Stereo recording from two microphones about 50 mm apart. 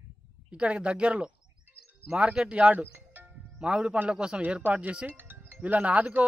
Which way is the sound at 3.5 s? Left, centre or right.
Centre.